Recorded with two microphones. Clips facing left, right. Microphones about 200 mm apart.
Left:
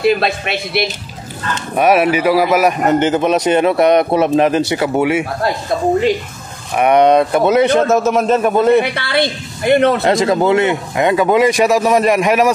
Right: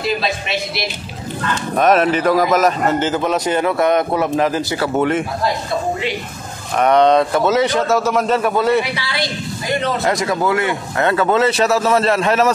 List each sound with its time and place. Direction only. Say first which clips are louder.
0.0 s a woman's voice: left 6 dB; 60° left (ahead or behind)
1.8 s a man's voice: left 2 dB; 10° left (ahead or behind)
6.8 s a man's voice: left 2 dB; 15° left (ahead or behind)
8.9 s a woman's voice: left 6 dB; 60° left (ahead or behind)
10.0 s a man's voice: left 5 dB; 25° left (ahead or behind)